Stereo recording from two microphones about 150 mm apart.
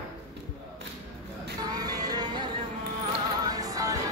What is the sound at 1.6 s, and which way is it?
Music, 25° right (ahead or behind).